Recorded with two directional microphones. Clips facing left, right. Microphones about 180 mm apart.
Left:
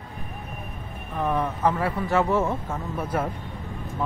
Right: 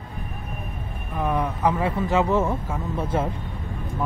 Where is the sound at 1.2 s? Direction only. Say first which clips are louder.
Right 1 dB; 10° right (ahead or behind).